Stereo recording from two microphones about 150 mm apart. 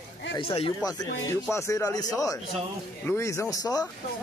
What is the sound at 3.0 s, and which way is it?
Speech, 20° left (ahead or behind).